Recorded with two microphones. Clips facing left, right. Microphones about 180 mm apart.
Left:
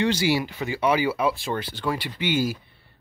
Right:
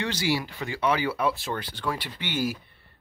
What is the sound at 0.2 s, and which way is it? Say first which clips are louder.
Speech: left 4 dB; 10° left (ahead or behind).